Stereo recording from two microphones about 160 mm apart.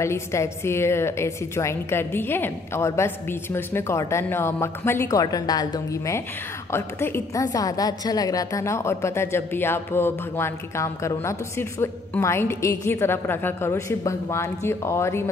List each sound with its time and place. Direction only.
0.0 s a woman's voice: 15° left (ahead or behind)
6.7 s a woman's voice: 15° left (ahead or behind)